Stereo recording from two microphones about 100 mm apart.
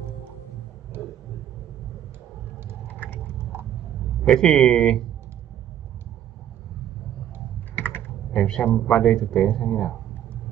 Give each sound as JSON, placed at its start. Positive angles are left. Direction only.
{"t": 2.9, "sound": "patter", "side_deg": 20}
{"t": 4.2, "sound": "speech", "side_deg": 5}
{"t": 7.7, "sound": "typing", "side_deg": 20}
{"t": 8.3, "sound": "speech", "side_deg": 10}